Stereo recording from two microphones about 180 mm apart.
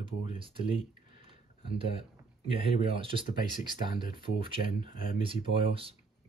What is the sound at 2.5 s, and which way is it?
Speech, 30° right (ahead or behind).